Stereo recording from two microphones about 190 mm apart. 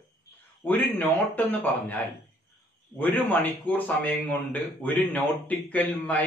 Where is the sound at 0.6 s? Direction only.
10° left (ahead or behind).